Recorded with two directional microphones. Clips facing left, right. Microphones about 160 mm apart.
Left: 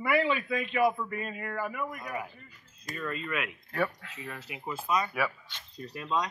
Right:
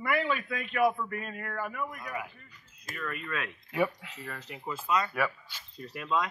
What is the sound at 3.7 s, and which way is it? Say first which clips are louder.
Speech: right 2 dB; 15° right (ahead or behind).